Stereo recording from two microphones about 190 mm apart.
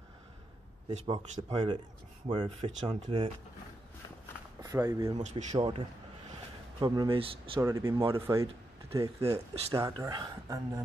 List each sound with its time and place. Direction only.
0.9 s speech: 25° right (ahead or behind)
2.2 s speech: 25° right (ahead or behind)
4.6 s speech: 15° right (ahead or behind)
5.1 s speech: 35° right (ahead or behind)
7.6 s speech: 15° right (ahead or behind)
8.9 s speech: 30° right (ahead or behind)
9.3 s speech: 15° right (ahead or behind)